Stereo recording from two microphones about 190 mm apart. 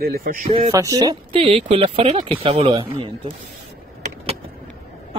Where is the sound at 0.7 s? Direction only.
20° right (ahead or behind).